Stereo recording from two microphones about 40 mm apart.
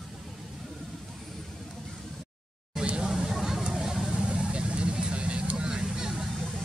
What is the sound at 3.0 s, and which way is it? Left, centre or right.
Hubbub, centre.